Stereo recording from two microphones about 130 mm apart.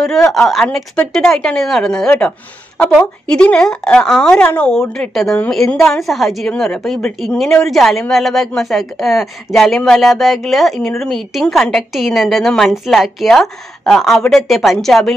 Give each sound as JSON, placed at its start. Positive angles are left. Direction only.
{"t": 0.0, "sound": "speech", "side_deg": 5}